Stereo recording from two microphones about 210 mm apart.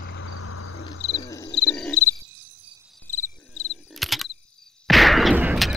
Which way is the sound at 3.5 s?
70° left (ahead or behind).